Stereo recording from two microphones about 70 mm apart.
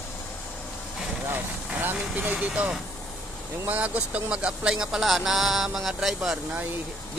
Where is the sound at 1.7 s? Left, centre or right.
Right.